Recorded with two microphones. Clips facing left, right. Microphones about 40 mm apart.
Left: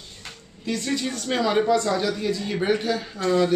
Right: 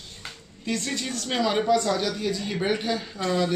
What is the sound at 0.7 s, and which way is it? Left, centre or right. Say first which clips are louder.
A man's voice: left 3 dB; centre.